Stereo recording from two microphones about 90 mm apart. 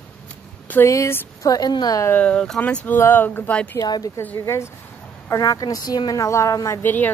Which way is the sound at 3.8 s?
40° left (ahead or behind).